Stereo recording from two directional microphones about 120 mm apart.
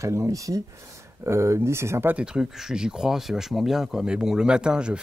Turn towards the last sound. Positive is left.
turn(degrees=-5)  # may be behind; listen again after turning